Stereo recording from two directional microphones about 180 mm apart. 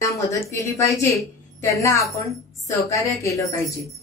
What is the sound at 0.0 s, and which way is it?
A woman's voice, 15° left (ahead or behind).